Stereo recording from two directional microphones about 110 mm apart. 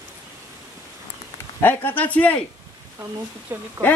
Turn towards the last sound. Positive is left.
turn(degrees=-20)  # may be behind; listen again after turning